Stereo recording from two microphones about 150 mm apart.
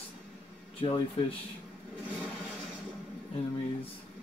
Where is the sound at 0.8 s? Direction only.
40° left (ahead or behind).